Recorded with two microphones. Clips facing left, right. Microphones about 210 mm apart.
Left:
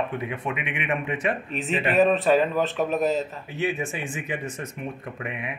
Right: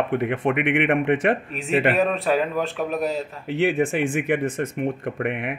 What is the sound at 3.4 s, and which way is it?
Speech, 80° right.